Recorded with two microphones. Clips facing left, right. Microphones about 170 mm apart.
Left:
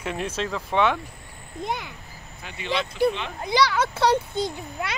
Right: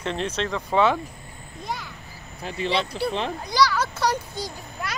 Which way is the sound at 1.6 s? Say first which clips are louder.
Left 3 dB; 20° left (ahead or behind).